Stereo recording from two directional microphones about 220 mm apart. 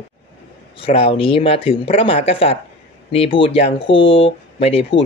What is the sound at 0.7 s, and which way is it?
Speech, 25° left (ahead or behind).